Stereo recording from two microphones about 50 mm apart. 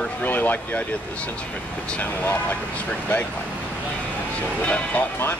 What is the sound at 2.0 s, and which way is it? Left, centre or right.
Speech, left.